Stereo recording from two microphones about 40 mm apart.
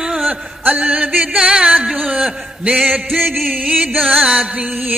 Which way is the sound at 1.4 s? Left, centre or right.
Right.